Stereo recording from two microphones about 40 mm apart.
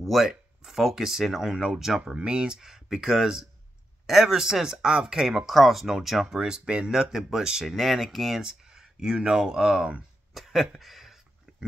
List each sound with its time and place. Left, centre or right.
0.0 s speech: centre
2.0 s speech: right
5.5 s speech: centre
6.4 s speech: centre
7.6 s speech: centre
8.4 s speech: centre
10.3 s a sound: centre